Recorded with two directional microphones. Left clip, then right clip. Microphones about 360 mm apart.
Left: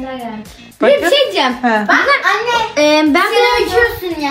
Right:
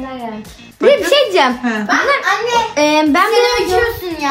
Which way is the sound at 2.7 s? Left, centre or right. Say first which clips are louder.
Left 3 dB; centre.